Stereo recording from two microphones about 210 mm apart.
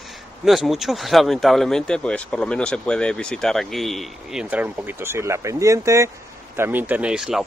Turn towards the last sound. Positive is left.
turn(degrees=-5)  # may be behind; listen again after turning